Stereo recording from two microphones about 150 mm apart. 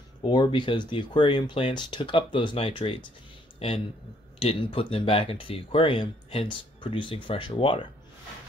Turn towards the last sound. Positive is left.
turn(degrees=35)  # may be behind; listen again after turning